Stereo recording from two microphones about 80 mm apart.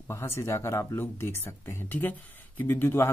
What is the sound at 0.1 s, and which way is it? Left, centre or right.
Speech, left.